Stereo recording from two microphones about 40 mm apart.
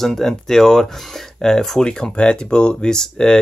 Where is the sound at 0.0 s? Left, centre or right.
Centre.